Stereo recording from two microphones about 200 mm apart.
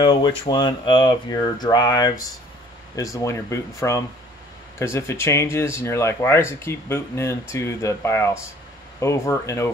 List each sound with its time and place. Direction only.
0.0 s speech: 20° left (ahead or behind)